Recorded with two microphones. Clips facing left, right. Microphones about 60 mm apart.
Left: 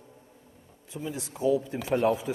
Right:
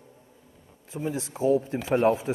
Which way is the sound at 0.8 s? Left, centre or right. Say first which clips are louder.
Right 5 dB; right.